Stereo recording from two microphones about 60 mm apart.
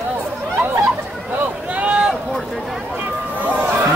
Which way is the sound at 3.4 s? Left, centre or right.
Right.